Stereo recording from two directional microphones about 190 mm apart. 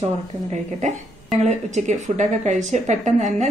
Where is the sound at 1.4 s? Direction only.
40° right (ahead or behind).